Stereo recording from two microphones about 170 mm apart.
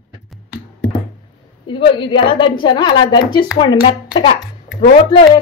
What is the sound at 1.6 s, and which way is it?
A woman's voice, 30° left (ahead or behind).